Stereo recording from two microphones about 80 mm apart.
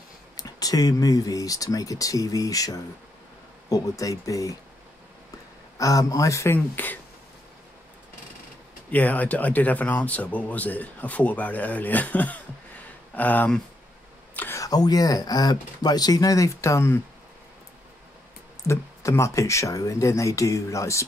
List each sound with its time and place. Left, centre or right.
0.4 s speech: left
5.8 s speech: left
6.5 s speech: left
8.9 s speech: centre
14.5 s speech: left
18.7 s speech: left